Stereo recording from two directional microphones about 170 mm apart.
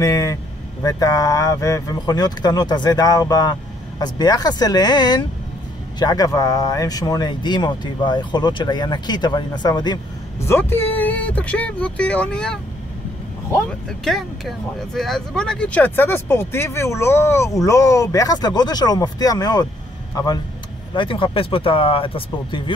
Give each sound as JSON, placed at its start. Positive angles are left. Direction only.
{"t": 0.0, "sound": "speech", "side_deg": 20}
{"t": 10.4, "sound": "speech", "side_deg": 15}
{"t": 13.8, "sound": "speech", "side_deg": 0}